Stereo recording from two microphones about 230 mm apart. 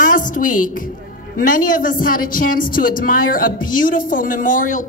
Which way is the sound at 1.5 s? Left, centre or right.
Left.